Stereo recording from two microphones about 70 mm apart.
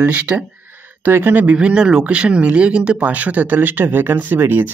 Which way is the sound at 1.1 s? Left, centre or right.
Right.